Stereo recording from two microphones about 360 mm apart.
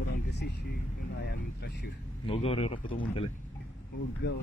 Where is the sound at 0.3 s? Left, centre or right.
Left.